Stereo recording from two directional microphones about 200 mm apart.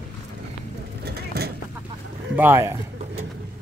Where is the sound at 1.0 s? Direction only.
50° right (ahead or behind).